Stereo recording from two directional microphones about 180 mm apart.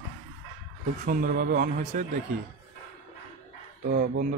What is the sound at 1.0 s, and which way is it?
Speech, 55° right (ahead or behind).